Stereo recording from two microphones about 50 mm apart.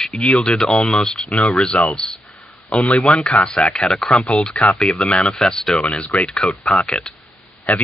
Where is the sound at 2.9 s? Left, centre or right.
Centre.